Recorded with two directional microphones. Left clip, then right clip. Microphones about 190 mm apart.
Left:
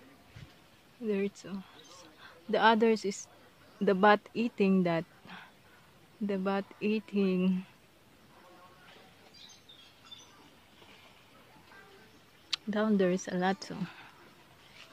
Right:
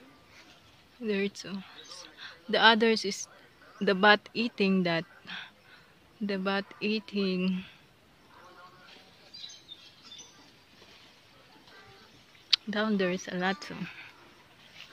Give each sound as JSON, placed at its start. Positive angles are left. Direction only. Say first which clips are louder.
{"t": 1.0, "sound": "speech", "louder": "right 2 dB", "side_deg": 0}
{"t": 12.4, "sound": "speech", "louder": "right 4 dB", "side_deg": 20}
{"t": 13.4, "sound": "speech", "louder": "right 1 dB", "side_deg": 15}